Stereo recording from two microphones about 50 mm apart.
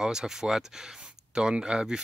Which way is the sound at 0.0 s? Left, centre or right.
Centre.